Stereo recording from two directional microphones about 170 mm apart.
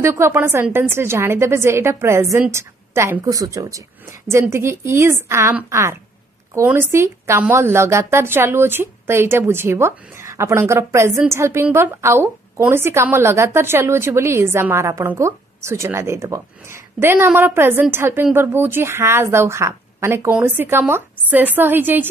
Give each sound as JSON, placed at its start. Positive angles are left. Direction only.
{"t": 0.0, "sound": "a woman's voice", "side_deg": -15}